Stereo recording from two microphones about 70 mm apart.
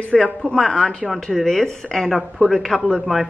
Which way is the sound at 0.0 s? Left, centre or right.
Centre.